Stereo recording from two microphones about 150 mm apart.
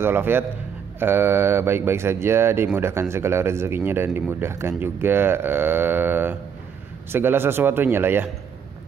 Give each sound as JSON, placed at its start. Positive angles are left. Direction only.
{"t": 0.0, "sound": "speech", "side_deg": -15}